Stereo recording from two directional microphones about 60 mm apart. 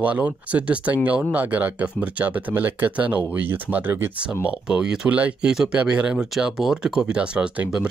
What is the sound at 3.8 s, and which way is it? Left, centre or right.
Speech, right.